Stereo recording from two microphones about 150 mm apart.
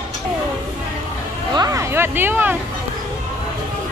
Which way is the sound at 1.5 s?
25° right (ahead or behind).